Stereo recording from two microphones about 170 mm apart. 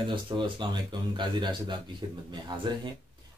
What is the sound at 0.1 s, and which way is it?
Speech, 30° right (ahead or behind).